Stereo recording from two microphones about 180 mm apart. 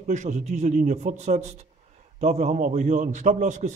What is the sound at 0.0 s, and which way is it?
A man's voice, 40° right (ahead or behind).